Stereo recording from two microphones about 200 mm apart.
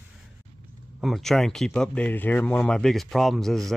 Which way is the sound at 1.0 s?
Centre (ahead or behind).